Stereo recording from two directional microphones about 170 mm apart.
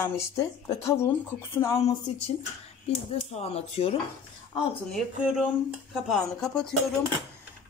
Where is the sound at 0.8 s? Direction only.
15° left (ahead or behind).